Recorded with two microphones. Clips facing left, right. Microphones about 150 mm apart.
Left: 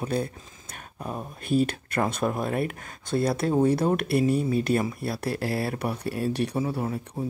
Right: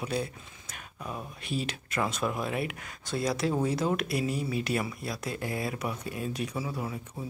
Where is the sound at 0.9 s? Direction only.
40° left (ahead or behind); by 4.2 s 60° left (ahead or behind).